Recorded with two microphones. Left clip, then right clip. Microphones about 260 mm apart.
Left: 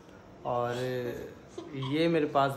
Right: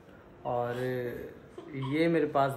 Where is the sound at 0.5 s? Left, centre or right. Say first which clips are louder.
Left 1 dB; centre.